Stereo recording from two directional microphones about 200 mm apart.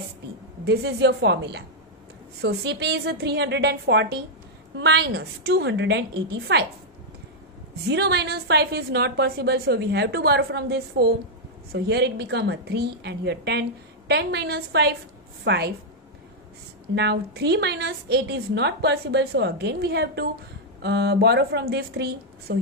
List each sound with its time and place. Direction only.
0.7 s a woman's voice: 60° right (ahead or behind)
7.9 s a woman's voice: 55° right (ahead or behind)
16.9 s a woman's voice: 60° right (ahead or behind)